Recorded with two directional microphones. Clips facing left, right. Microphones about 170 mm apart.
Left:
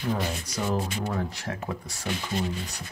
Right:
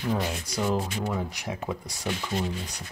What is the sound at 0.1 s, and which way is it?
Speech, 5° right (ahead or behind).